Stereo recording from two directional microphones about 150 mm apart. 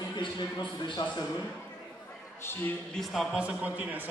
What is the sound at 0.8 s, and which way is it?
Speech, 30° left (ahead or behind).